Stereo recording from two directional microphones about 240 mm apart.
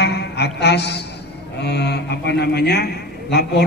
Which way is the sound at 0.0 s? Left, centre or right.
Left.